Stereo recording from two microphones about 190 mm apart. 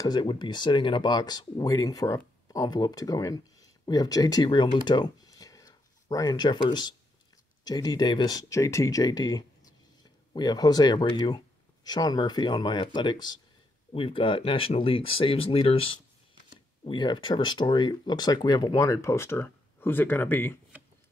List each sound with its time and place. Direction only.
0.0 s speech: 25° left (ahead or behind)